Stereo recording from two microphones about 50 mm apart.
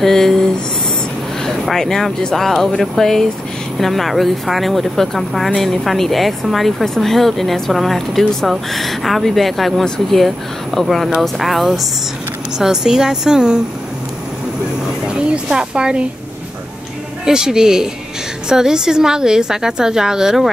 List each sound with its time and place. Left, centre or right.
0.0 s speech: centre
1.4 s speech: centre
12.5 s a woman's voice: centre
15.0 s speech: centre
17.2 s a woman's voice: centre